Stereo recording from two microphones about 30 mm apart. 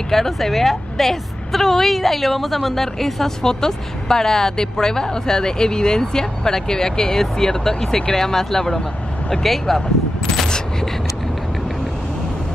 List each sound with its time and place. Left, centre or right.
0.1 s a woman's voice: centre